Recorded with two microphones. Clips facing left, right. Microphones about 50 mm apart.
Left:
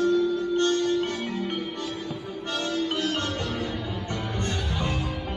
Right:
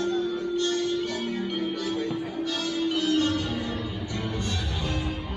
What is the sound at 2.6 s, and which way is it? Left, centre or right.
Music, left.